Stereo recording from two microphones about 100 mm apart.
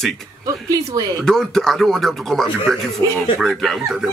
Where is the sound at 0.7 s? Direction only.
35° right (ahead or behind).